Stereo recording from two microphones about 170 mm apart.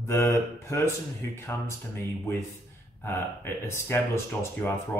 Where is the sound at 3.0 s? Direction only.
15° left (ahead or behind).